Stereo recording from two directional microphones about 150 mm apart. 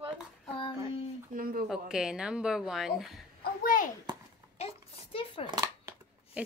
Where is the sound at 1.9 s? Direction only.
5° right (ahead or behind).